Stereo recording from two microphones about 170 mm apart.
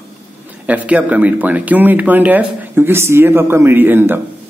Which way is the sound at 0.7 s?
10° right (ahead or behind).